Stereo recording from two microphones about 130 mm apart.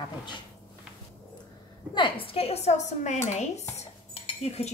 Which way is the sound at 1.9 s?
40° left (ahead or behind).